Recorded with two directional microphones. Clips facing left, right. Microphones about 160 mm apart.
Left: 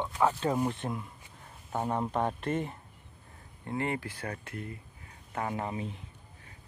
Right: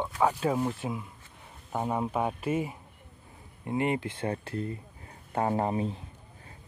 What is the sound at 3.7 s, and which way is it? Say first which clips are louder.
Speech: right 4 dB; 20° right (ahead or behind).